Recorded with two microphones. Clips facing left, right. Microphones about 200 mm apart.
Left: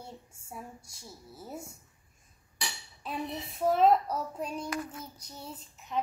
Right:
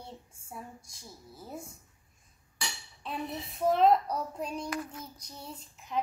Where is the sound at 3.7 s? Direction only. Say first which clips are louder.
Even; 5° left (ahead or behind).